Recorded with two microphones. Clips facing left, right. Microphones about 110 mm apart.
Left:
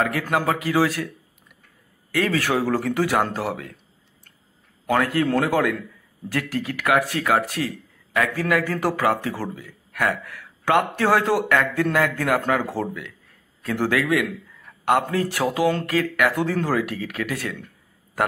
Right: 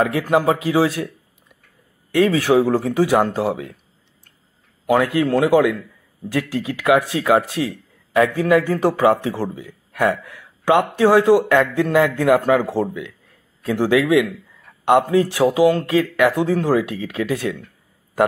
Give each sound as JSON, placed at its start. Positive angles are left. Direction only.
{"t": 0.0, "sound": "a man's voice", "side_deg": -20}
{"t": 2.1, "sound": "a man's voice", "side_deg": -20}
{"t": 4.8, "sound": "a man's voice", "side_deg": -15}